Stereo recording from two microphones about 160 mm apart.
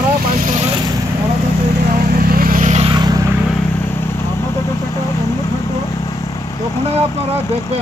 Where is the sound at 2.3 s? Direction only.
60° right (ahead or behind).